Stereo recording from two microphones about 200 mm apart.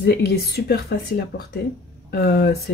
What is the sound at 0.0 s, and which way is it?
Speech, 55° left (ahead or behind).